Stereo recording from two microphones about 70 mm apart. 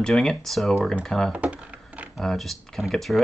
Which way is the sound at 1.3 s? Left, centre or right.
Centre.